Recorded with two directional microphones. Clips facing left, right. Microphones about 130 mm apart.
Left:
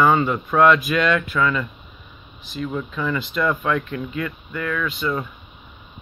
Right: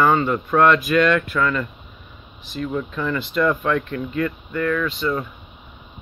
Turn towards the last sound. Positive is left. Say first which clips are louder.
# right 2 dB
turn(degrees=5)  # may be behind; listen again after turning